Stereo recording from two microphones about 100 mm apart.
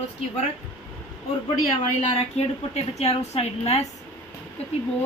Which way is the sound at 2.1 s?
90° left.